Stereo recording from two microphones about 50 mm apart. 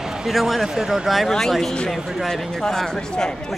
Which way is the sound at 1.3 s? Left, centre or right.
Centre.